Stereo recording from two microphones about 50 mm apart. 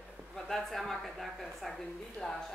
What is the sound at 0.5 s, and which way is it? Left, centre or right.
A woman's voice, centre.